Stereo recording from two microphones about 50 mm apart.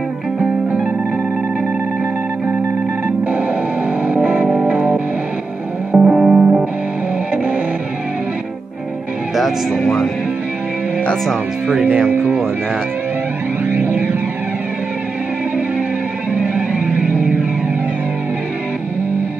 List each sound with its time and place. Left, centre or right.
4.0 s music: right
5.9 s music: centre
9.4 s speech: centre
13.7 s music: right
16.3 s music: right